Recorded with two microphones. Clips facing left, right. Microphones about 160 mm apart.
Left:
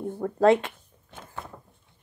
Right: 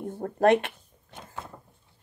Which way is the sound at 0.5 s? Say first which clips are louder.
Left 1 dB; 65° right (ahead or behind).